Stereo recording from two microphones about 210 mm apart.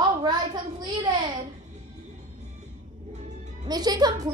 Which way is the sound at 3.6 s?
20° right (ahead or behind).